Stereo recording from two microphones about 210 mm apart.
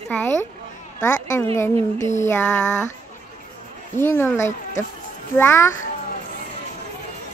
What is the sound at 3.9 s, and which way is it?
Speech, 10° left (ahead or behind).